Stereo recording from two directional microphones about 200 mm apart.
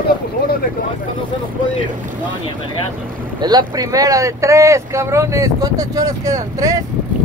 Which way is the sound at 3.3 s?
20° right (ahead or behind).